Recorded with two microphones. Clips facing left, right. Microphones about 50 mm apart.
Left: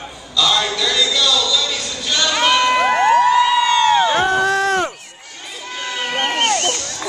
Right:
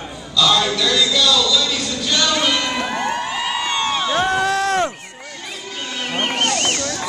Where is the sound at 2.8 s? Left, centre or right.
Left.